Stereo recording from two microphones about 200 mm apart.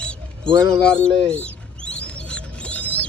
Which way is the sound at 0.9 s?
5° left (ahead or behind).